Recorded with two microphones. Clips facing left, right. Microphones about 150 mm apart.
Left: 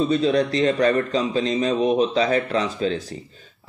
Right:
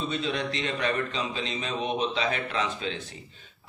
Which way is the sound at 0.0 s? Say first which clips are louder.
Left 11 dB; 40° left (ahead or behind).